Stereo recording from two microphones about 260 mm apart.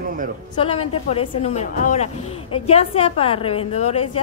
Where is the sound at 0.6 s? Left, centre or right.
Left.